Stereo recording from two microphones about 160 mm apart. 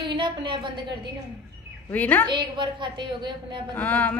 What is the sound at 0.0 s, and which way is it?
Speech, 30° right (ahead or behind).